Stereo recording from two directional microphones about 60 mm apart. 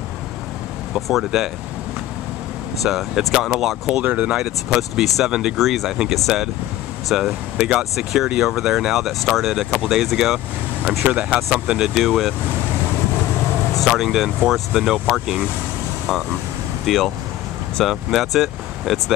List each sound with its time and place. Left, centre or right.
0.9 s speech: centre
2.8 s speech: centre
4.0 s speech: right
4.4 s speech: centre
11.1 s speech: centre
13.7 s speech: centre